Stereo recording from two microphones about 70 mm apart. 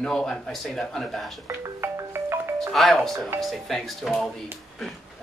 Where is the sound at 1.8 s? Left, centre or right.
Right.